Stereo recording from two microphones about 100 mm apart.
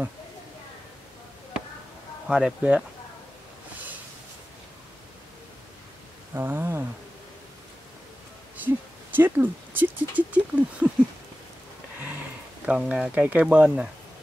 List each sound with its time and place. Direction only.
2.2 s speech: 10° right (ahead or behind)
6.3 s a sound: 25° right (ahead or behind)
8.6 s speech: 20° right (ahead or behind)
12.6 s speech: 10° right (ahead or behind)